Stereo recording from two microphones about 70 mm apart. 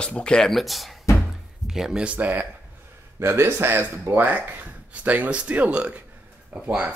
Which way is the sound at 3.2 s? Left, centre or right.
Right.